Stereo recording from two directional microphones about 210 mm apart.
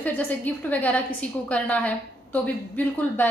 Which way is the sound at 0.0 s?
5° left (ahead or behind).